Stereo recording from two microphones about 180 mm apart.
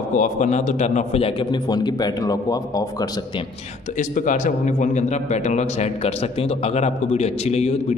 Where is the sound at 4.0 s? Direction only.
45° left (ahead or behind).